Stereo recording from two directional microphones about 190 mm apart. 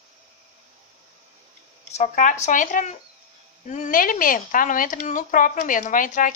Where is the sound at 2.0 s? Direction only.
40° left (ahead or behind).